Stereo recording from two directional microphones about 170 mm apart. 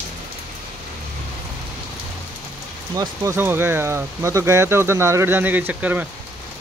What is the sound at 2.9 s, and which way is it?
Speech, 15° right (ahead or behind).